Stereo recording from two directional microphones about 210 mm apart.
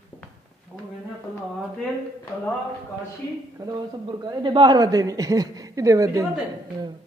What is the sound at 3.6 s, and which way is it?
Speech, 15° right (ahead or behind).